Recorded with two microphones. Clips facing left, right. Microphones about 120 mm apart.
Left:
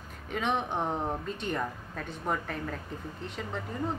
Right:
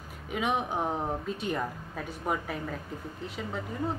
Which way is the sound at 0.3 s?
5° right (ahead or behind).